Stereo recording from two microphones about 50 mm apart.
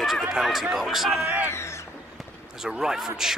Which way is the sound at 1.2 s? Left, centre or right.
Right.